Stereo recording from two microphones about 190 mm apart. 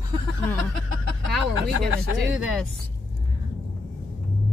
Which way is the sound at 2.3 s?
Centre (ahead or behind).